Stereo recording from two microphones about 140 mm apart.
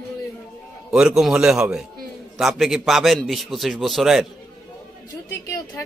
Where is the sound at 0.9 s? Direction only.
5° right (ahead or behind).